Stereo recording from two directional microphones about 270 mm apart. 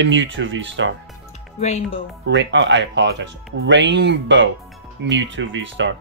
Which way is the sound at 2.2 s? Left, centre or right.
Right.